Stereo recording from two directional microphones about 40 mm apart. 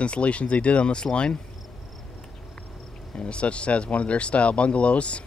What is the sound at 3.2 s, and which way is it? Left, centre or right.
Speech, left.